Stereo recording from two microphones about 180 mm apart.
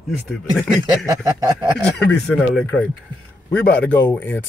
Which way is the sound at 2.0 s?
5° left (ahead or behind).